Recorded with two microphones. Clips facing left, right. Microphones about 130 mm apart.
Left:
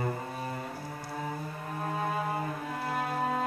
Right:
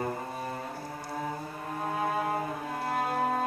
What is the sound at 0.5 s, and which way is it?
Music, 15° right (ahead or behind).